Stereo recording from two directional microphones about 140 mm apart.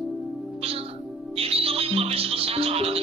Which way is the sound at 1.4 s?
45° right (ahead or behind).